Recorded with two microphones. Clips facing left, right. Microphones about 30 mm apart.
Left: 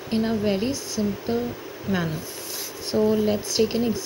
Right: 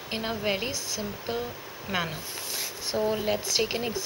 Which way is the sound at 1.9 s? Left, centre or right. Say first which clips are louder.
Left 4 dB; right.